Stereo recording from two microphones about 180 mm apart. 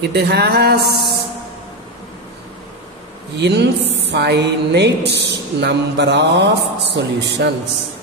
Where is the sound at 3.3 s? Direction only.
70° right (ahead or behind).